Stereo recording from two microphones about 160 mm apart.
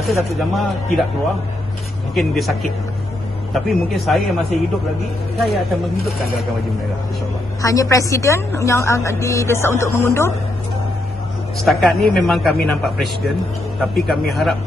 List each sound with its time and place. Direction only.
0.4 s speech: centre (ahead or behind)
2.1 s speech: centre (ahead or behind)
7.6 s a woman's voice: 20° left (ahead or behind)
11.6 s speech: centre (ahead or behind)